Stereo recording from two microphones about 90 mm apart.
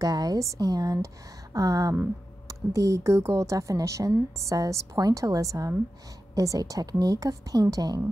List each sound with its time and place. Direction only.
0.0 s a woman's voice: 45° right (ahead or behind)